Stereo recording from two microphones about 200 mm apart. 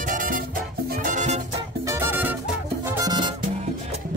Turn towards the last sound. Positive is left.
turn(degrees=-25)  # may be behind; listen again after turning